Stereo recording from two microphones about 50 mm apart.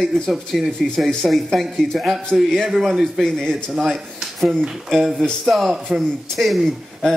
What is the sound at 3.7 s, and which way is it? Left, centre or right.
A man's voice, centre.